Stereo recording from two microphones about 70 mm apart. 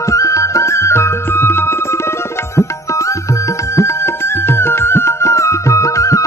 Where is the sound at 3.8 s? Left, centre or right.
Left.